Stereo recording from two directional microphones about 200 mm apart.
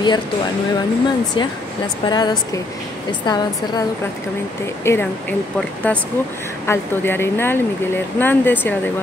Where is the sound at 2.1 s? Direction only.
20° left (ahead or behind).